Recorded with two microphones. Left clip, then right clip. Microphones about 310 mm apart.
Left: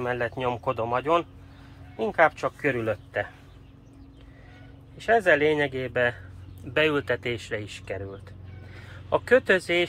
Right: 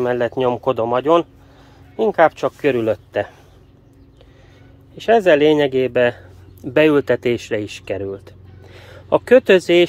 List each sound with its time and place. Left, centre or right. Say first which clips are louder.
0.0 s speech: right 10 dB; right
4.9 s speech: right 8 dB; right